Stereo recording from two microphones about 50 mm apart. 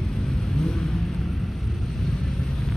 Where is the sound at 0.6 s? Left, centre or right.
Centre.